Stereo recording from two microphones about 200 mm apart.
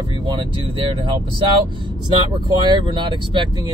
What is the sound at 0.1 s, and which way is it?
Speech, 25° right (ahead or behind).